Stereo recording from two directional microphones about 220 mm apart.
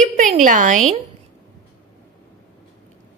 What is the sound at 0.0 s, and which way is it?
A woman's voice, 35° right (ahead or behind).